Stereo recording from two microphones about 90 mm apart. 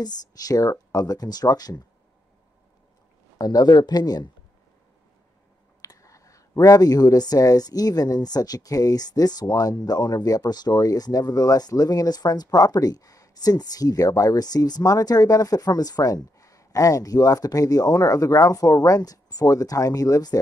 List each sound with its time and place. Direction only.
0.0 s speech: 45° left (ahead or behind)
3.3 s speech: 45° left (ahead or behind)
5.8 s speech: 40° left (ahead or behind)